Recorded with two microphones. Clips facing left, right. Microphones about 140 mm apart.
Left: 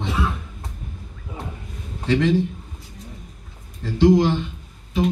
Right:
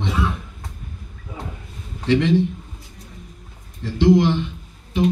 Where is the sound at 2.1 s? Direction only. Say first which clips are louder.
Right 1 dB; 40° left (ahead or behind).